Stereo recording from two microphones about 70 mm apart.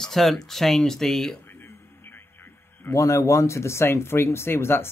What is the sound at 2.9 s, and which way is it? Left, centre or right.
Speech, left.